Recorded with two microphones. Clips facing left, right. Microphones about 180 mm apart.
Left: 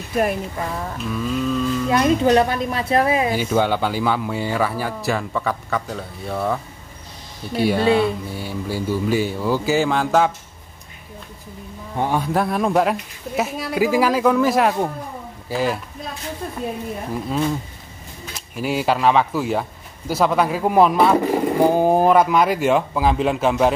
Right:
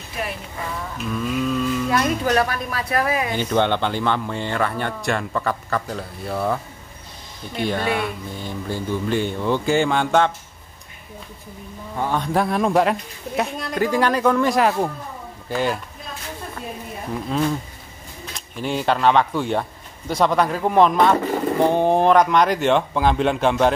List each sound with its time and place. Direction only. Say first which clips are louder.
0.1 s speech: left 9 dB; 50° left (ahead or behind)
0.9 s speech: right 1 dB; centre (ahead or behind)
1.9 s speech: left 8 dB; 25° left (ahead or behind)
3.3 s speech: left 1 dB; 5° left (ahead or behind)
7.8 s speech: left 10 dB; 25° left (ahead or behind)
8.3 s speech: left 2 dB; 10° left (ahead or behind)
12.0 s speech: left 2 dB; 10° left (ahead or behind)
12.3 s speech: even; centre (ahead or behind)
17.1 s speech: right 1 dB; centre (ahead or behind)